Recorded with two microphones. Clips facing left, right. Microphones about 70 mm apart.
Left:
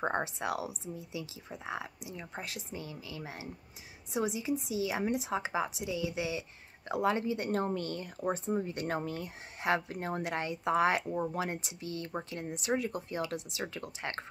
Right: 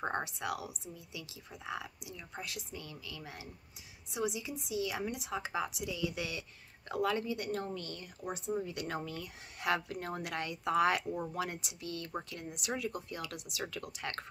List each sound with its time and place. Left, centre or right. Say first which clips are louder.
0.2 s speech: left 4 dB; left
2.1 s speech: left 2 dB; left
4.1 s speech: left 5 dB; left
5.5 s speech: left 3 dB; centre